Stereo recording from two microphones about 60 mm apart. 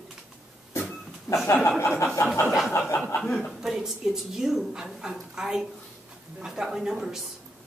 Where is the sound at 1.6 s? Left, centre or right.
Left.